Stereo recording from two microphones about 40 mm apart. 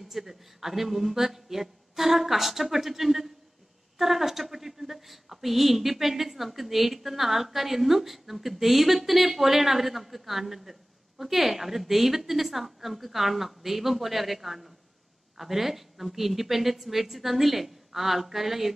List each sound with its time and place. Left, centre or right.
0.1 s a woman's voice: centre